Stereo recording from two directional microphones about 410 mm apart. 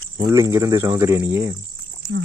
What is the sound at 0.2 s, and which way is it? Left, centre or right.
Speech, centre.